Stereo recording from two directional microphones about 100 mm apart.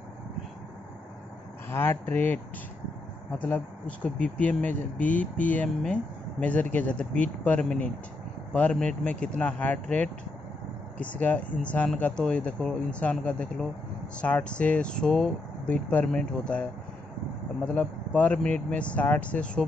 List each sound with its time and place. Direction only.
1.7 s speech: 20° left (ahead or behind)
17.7 s speech: 15° left (ahead or behind)